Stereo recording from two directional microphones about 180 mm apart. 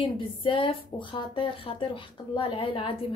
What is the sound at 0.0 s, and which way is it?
A woman's voice, 30° left (ahead or behind).